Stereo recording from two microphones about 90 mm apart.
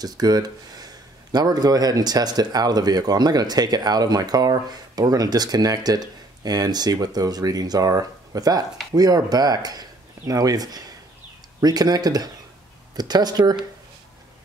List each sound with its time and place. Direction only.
0.0 s speech: 45° right (ahead or behind)